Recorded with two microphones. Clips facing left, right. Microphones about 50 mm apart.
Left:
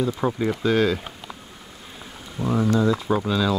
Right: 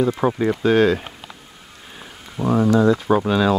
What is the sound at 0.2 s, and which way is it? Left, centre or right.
Speech, centre.